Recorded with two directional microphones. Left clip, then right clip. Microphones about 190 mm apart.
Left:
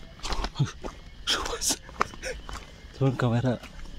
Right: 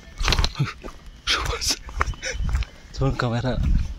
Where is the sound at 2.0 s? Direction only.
40° right (ahead or behind).